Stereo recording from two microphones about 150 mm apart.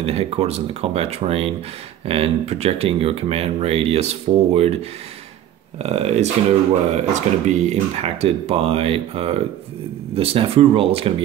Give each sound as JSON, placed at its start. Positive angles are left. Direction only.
{"t": 0.0, "sound": "speech", "side_deg": -40}
{"t": 5.8, "sound": "speech", "side_deg": -45}